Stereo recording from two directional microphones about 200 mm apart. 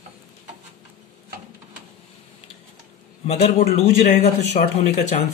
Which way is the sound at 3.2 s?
30° left (ahead or behind).